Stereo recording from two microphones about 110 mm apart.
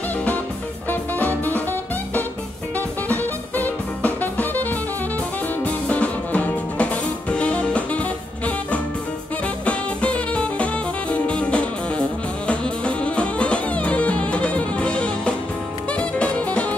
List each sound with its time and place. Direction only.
0.8 s music: 15° left (ahead or behind)